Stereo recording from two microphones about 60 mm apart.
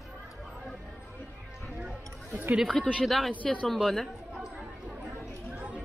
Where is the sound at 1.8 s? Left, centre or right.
Centre.